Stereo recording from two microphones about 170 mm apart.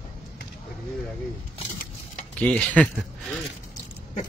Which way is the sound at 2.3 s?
10° left (ahead or behind).